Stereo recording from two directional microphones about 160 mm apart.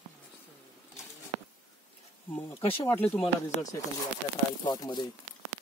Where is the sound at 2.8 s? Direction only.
10° left (ahead or behind).